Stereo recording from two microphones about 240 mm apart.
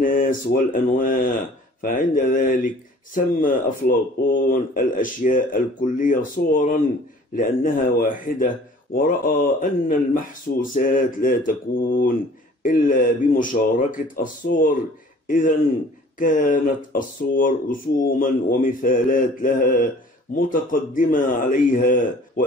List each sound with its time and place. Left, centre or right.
0.0 s speech: left